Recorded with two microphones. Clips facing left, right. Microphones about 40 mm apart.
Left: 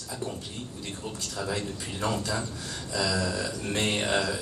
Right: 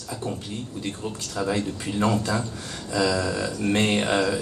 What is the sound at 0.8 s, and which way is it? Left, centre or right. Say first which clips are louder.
A man's voice: right 4 dB; right.